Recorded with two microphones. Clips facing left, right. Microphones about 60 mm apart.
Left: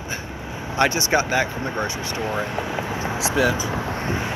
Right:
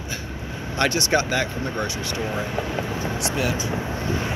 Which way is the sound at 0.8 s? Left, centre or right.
Left.